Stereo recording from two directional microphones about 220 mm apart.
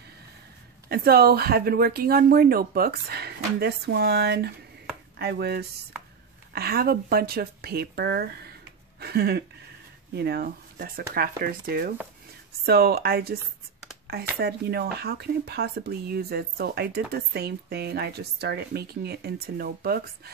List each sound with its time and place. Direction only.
0.8 s speech: 45° right (ahead or behind)